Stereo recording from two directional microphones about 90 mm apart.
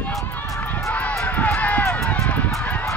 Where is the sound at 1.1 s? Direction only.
15° left (ahead or behind).